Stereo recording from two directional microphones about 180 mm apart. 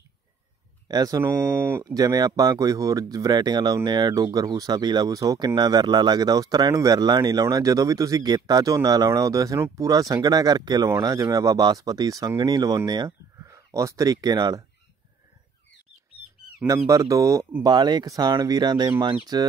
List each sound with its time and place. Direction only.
0.8 s speech: 20° right (ahead or behind)
16.6 s speech: 20° right (ahead or behind)